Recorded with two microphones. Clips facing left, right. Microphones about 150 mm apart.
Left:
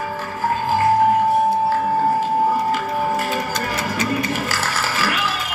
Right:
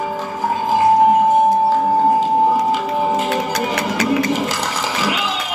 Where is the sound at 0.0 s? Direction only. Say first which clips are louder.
Right 2 dB; 15° right (ahead or behind).